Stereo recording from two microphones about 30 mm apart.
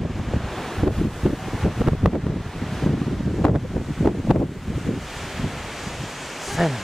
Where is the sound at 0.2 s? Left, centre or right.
Centre.